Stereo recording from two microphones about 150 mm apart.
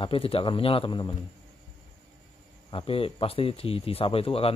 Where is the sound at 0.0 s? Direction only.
40° left (ahead or behind).